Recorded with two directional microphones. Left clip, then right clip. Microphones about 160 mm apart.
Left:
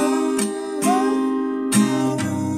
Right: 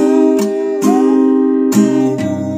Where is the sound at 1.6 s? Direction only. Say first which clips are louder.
Right 8 dB; 30° right (ahead or behind).